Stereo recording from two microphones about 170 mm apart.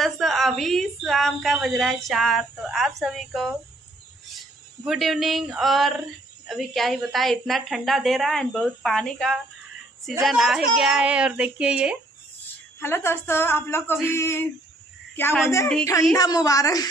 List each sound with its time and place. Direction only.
0.0 s a woman's voice: centre (ahead or behind)
4.8 s speech: centre (ahead or behind)
12.8 s a woman's voice: 15° left (ahead or behind)